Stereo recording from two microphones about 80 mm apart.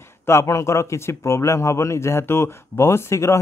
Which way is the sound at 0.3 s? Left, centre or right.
Left.